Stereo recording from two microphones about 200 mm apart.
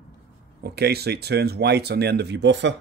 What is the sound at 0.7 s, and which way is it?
Speech, 55° right (ahead or behind).